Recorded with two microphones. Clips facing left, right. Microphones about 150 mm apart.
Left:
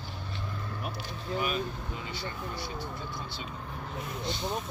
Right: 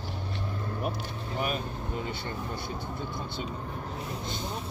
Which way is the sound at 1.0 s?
45° right (ahead or behind).